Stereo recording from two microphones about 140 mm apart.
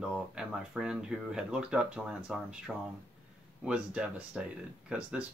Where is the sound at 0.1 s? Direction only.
5° right (ahead or behind).